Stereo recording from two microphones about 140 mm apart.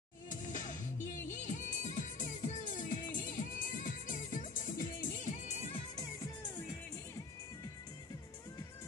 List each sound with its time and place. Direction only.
0.3 s music: 65° left (ahead or behind); by 5.8 s 50° left (ahead or behind)